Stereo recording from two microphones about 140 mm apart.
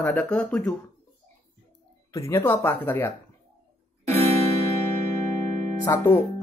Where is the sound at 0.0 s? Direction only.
10° left (ahead or behind).